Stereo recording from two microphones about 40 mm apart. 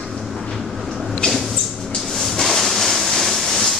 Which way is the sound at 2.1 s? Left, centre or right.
Centre.